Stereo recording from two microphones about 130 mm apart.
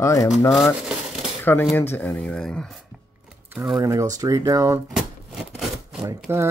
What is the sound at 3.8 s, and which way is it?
Speech, 25° right (ahead or behind).